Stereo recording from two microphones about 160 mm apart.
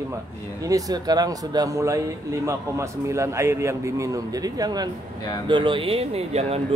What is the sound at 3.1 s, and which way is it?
Speech, 20° right (ahead or behind).